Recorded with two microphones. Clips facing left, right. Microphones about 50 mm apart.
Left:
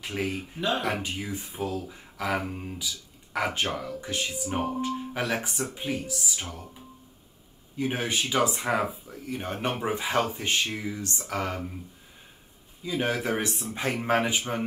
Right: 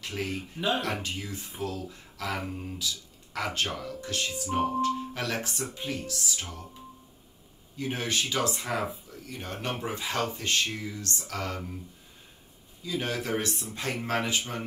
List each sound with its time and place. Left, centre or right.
0.0 s speech: centre
7.7 s speech: centre
12.8 s speech: left